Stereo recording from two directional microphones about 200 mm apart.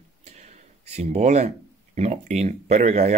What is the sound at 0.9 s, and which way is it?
Speech, 35° right (ahead or behind).